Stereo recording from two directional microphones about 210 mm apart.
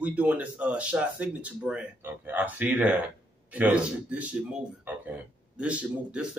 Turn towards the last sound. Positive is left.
turn(degrees=-5)  # may be behind; listen again after turning